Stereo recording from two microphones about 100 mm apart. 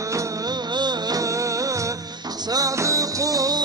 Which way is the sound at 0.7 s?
45° right (ahead or behind).